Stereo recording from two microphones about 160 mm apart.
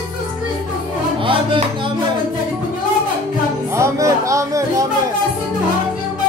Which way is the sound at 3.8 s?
20° right (ahead or behind).